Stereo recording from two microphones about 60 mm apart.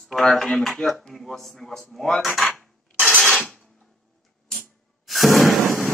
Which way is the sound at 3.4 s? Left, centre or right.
Centre.